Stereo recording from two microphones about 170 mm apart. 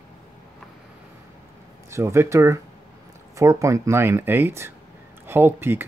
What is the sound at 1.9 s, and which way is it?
Speech, 15° right (ahead or behind).